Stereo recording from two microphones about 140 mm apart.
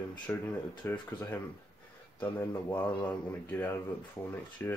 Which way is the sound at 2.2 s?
20° left (ahead or behind).